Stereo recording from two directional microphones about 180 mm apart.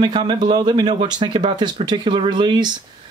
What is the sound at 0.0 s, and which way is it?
Speech, 25° right (ahead or behind).